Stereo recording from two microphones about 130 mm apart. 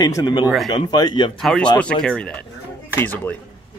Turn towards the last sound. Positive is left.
turn(degrees=15)  # may be behind; listen again after turning